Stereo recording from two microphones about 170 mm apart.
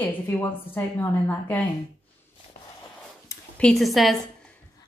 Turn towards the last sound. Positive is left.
turn(degrees=0)  # may be behind; listen again after turning